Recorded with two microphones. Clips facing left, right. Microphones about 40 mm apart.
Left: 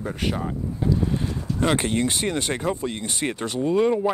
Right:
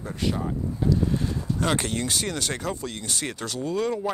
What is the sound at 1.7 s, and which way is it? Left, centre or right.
Speech, left.